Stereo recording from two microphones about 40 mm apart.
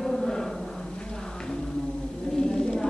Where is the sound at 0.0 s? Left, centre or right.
Centre.